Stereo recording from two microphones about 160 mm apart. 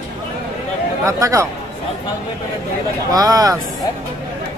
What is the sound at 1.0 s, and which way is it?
Speech, 20° right (ahead or behind).